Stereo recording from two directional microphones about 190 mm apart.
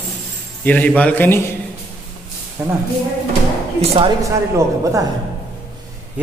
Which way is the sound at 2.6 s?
10° right (ahead or behind).